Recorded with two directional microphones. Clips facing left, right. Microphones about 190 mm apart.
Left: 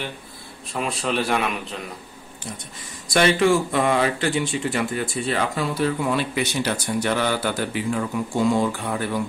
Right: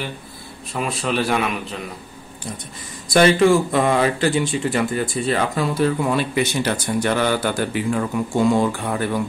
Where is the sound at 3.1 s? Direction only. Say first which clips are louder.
Right 4 dB; 35° right (ahead or behind); by 9.0 s 55° right (ahead or behind).